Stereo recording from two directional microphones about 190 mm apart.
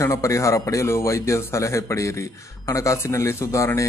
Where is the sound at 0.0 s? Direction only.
15° left (ahead or behind).